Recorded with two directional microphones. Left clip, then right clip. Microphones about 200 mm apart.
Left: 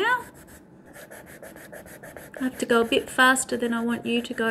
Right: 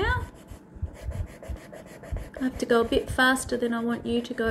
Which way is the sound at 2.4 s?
25° left (ahead or behind).